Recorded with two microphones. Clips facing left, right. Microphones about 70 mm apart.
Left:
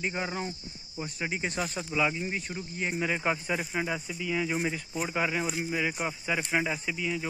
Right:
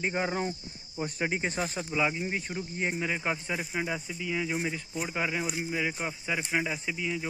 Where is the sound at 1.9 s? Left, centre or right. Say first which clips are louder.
Left 1 dB; right.